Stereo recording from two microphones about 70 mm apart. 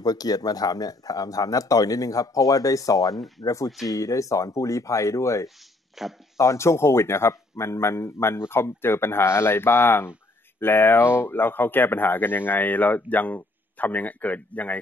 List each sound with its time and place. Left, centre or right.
0.0 s speech: left
3.2 s speech: centre
3.4 s speech: left
6.0 s speech: centre
6.3 s a man's voice: left